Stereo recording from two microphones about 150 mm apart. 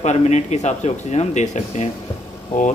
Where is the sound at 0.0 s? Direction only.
50° left (ahead or behind).